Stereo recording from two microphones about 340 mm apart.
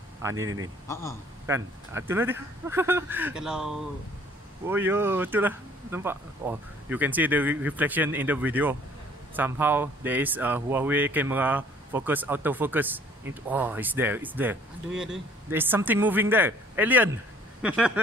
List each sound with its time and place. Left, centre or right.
0.4 s speech: right
1.5 s speech: centre